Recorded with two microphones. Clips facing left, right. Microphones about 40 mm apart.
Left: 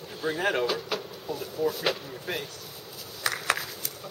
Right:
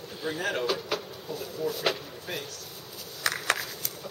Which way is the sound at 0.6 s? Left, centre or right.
Centre.